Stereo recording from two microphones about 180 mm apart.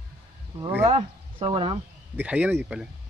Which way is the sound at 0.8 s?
30° right (ahead or behind).